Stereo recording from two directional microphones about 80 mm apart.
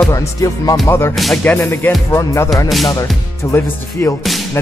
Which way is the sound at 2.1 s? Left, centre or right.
Left.